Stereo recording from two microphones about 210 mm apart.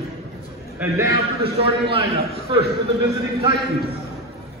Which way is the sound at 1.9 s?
25° right (ahead or behind).